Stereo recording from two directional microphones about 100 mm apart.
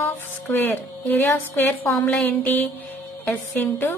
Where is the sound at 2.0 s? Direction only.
15° left (ahead or behind).